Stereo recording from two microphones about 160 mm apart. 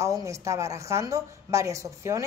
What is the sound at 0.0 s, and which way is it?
A woman's voice, 20° right (ahead or behind).